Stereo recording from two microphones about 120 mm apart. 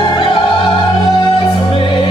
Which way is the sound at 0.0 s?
45° left (ahead or behind).